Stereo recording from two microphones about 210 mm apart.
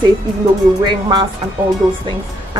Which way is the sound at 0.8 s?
20° right (ahead or behind).